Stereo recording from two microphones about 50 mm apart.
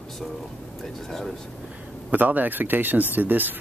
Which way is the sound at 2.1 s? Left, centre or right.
Right.